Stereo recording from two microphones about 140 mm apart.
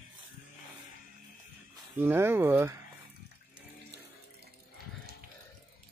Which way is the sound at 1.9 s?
15° right (ahead or behind).